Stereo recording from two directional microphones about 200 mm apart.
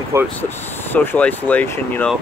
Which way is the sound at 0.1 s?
15° right (ahead or behind).